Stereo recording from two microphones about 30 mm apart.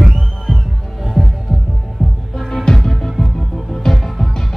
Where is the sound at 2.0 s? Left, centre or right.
Centre.